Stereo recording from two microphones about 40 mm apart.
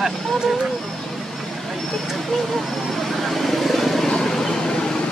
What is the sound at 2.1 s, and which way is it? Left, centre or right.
Vehicle, centre.